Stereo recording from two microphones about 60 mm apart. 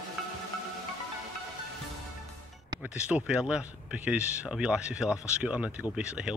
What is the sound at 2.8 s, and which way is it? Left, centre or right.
Speech, centre.